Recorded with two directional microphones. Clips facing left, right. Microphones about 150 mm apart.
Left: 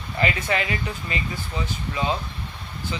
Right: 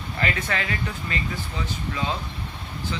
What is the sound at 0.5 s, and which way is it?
Speech, 15° left (ahead or behind).